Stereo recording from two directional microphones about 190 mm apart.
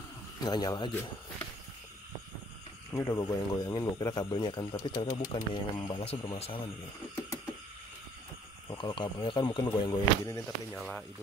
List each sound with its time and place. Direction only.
0.4 s speech: 20° left (ahead or behind)
2.9 s speech: 20° left (ahead or behind)
8.6 s speech: 25° left (ahead or behind)
10.8 s speech: 5° left (ahead or behind)